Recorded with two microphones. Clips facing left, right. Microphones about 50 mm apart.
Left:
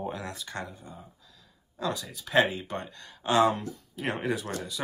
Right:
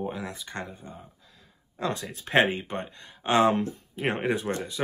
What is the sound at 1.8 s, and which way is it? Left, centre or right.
Speech, right.